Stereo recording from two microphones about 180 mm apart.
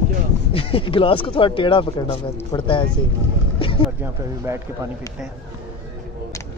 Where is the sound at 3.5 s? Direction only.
30° left (ahead or behind).